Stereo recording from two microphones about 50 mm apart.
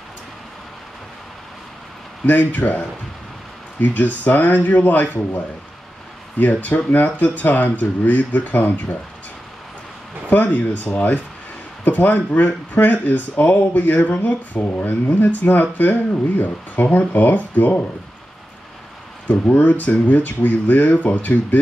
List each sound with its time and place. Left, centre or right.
2.2 s speech: left
3.8 s speech: left
10.3 s speech: left
19.2 s speech: left